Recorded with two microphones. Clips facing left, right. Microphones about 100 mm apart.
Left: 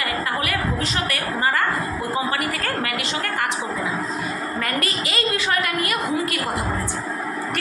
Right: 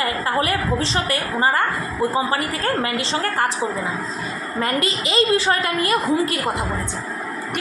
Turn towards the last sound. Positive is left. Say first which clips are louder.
# right 4 dB
turn(degrees=-30)  # may be behind; listen again after turning